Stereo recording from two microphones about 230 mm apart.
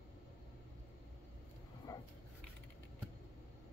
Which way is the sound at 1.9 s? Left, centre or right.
Centre.